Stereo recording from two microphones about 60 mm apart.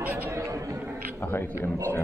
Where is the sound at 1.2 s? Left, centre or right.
Left.